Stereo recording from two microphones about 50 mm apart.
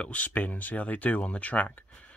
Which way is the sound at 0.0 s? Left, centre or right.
Left.